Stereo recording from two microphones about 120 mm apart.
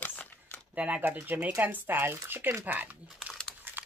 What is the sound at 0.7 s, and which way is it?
Speech, 10° right (ahead or behind).